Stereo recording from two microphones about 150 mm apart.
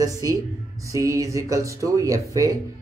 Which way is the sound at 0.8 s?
20° right (ahead or behind).